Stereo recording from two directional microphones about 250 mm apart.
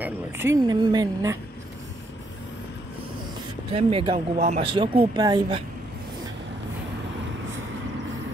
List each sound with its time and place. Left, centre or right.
0.0 s speech: centre
3.7 s speech: right